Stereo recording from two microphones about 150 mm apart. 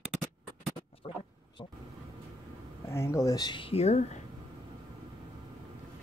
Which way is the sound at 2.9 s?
20° left (ahead or behind).